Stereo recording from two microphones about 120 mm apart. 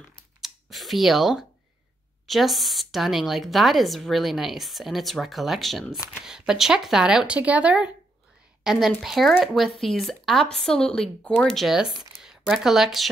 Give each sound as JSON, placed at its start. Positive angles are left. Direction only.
{"t": 0.4, "sound": "clicking", "side_deg": 0}
{"t": 2.2, "sound": "a woman's voice", "side_deg": 0}